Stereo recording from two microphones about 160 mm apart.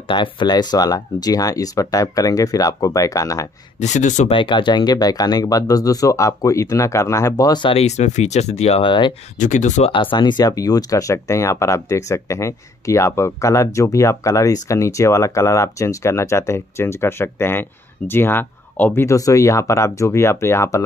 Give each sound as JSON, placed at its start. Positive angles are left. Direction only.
{"t": 0.1, "sound": "speech", "side_deg": 30}
{"t": 3.8, "sound": "speech", "side_deg": 45}
{"t": 4.3, "sound": "speech", "side_deg": 30}
{"t": 9.4, "sound": "speech", "side_deg": 50}
{"t": 9.9, "sound": "speech", "side_deg": 30}